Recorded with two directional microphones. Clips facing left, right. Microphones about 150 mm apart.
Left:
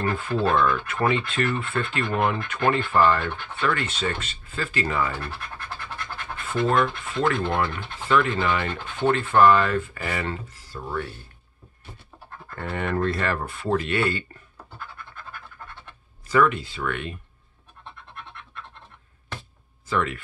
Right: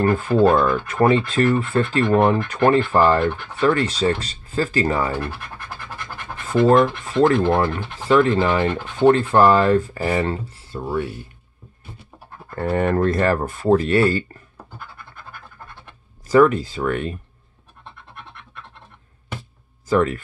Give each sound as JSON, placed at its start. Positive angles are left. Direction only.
{"t": 0.0, "sound": "speech", "side_deg": -45}
{"t": 5.2, "sound": "scratch", "side_deg": -10}
{"t": 6.4, "sound": "speech", "side_deg": -35}
{"t": 10.8, "sound": "speech", "side_deg": -15}
{"t": 12.5, "sound": "speech", "side_deg": -40}
{"t": 16.3, "sound": "speech", "side_deg": -40}
{"t": 19.9, "sound": "speech", "side_deg": -40}